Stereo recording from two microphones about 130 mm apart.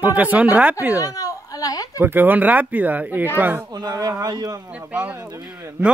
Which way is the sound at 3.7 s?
30° right (ahead or behind).